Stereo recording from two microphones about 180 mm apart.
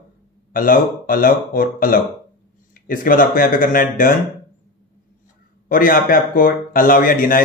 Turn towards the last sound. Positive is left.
turn(degrees=50)  # may be behind; listen again after turning